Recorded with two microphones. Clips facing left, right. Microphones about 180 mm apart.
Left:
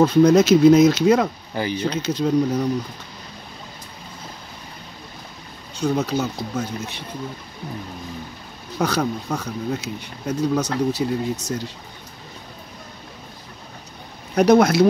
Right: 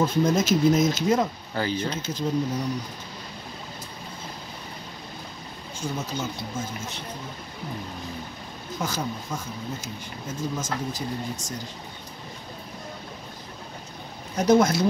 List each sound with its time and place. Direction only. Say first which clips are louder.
0.0 s speech: left 8 dB; 70° left (ahead or behind)
1.5 s speech: left 3 dB; 15° left (ahead or behind)
1.9 s speech: left 7 dB; 70° left (ahead or behind)
5.8 s speech: left 9 dB; 70° left (ahead or behind)
8.7 s speech: left 8 dB; 70° left (ahead or behind)
14.3 s speech: left 5 dB; 65° left (ahead or behind)